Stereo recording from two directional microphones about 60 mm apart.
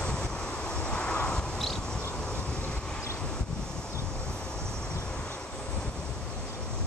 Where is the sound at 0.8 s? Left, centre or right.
Centre.